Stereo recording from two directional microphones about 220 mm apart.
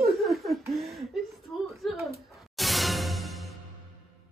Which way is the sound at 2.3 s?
Centre (ahead or behind).